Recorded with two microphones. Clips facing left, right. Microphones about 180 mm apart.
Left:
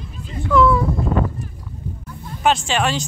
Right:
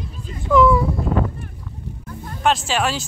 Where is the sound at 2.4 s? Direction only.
Centre (ahead or behind).